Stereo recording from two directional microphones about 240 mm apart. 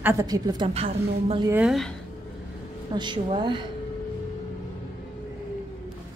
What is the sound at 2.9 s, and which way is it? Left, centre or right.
Speech, centre.